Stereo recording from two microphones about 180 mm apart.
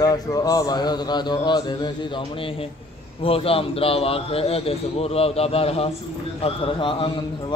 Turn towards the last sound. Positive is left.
turn(degrees=30)  # may be behind; listen again after turning